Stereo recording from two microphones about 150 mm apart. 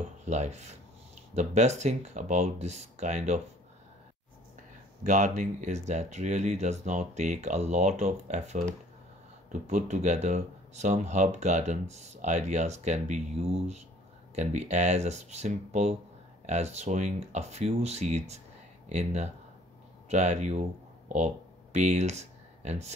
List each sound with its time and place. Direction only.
0.2 s rub: 50° right (ahead or behind)
1.3 s speech: 50° right (ahead or behind)
5.0 s speech: 55° right (ahead or behind)
21.7 s speech: 50° right (ahead or behind)